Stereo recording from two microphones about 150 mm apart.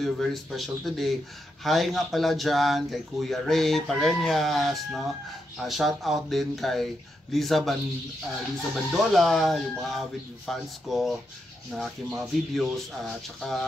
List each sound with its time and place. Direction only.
0.0 s speech: centre (ahead or behind)
8.9 s speech: centre (ahead or behind)